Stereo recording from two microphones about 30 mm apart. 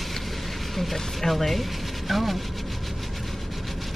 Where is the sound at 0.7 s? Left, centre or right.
Centre.